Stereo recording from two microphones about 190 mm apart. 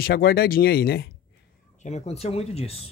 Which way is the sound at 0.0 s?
55° left (ahead or behind).